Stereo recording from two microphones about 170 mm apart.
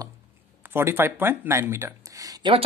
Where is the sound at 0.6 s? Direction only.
15° right (ahead or behind).